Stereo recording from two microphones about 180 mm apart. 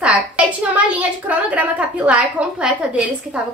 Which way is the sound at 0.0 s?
10° right (ahead or behind).